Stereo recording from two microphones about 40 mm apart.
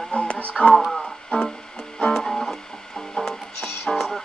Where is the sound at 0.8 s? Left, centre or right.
Centre.